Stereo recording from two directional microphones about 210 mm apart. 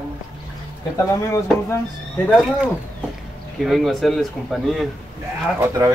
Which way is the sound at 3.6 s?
Centre (ahead or behind).